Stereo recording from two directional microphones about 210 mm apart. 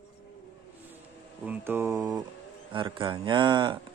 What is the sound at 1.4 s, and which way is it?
Speech, 10° right (ahead or behind).